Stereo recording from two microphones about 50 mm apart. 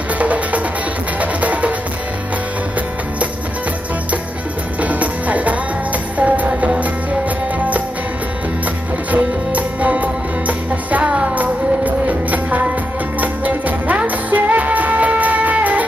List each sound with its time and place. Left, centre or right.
0.2 s music: right
4.7 s music: right
9.1 s music: right